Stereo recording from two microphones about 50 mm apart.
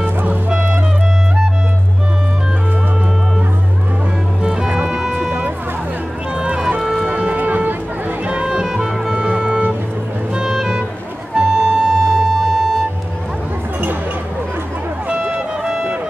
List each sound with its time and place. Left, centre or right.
0.0 s music: right
0.5 s music: right
4.4 s music: centre
6.3 s boat: centre
6.8 s music: centre
7.1 s music: right
7.3 s music: right
8.3 s music: centre
11.3 s music: right
15.6 s music: centre